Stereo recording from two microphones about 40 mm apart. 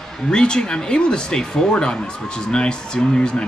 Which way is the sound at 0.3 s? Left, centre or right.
Centre.